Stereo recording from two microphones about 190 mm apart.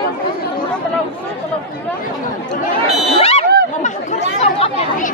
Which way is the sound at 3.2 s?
30° left (ahead or behind).